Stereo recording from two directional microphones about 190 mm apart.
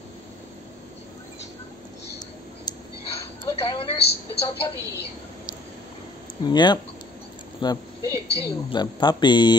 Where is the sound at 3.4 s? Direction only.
25° left (ahead or behind).